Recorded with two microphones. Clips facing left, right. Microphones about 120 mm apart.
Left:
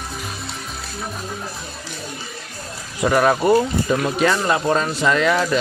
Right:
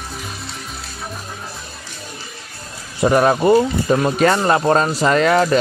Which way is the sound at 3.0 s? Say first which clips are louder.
Right 2 dB; 20° right (ahead or behind).